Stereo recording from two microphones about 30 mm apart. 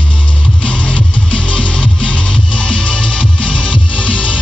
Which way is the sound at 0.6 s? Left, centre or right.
Left.